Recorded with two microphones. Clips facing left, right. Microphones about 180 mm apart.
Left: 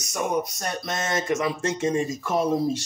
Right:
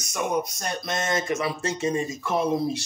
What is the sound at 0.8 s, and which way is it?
Speech, 45° left (ahead or behind).